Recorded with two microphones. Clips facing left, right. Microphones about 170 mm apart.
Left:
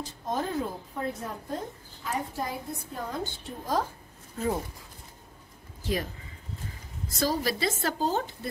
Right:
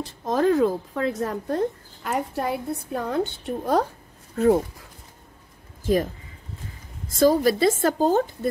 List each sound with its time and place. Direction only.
0.0 s speech: 85° right; by 4.5 s 70° right (ahead or behind)
7.1 s a woman's voice: 50° right (ahead or behind)